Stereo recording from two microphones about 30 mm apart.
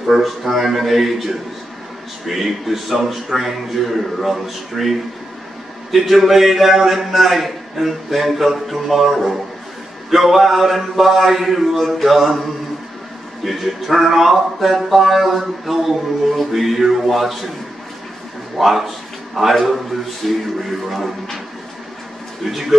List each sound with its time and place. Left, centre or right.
0.0 s a man's voice: centre
18.6 s a man's voice: centre
22.5 s a man's voice: centre